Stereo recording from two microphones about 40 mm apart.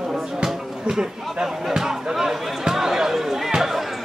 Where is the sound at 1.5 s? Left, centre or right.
Centre.